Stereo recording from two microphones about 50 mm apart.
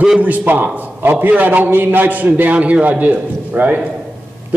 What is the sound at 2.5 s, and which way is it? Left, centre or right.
A man's voice, right.